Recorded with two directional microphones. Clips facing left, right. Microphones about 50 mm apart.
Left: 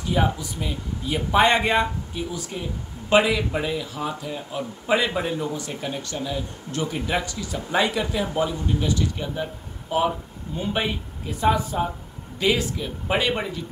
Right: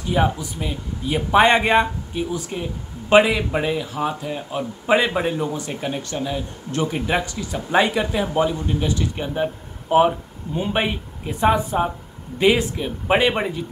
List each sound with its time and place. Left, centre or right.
0.1 s a man's voice: right